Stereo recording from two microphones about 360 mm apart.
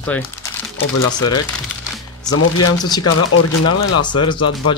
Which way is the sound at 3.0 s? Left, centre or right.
Left.